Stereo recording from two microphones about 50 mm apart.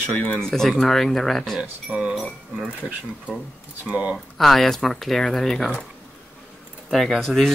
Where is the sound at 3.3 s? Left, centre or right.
Centre.